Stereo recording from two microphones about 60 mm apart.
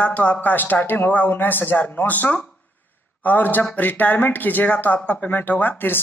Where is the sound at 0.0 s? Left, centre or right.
Left.